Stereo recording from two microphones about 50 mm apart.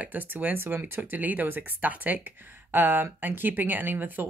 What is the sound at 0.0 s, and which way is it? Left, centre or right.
Speech, right.